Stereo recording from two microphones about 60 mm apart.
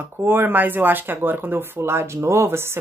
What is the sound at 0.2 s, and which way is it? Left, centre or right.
Speech, right.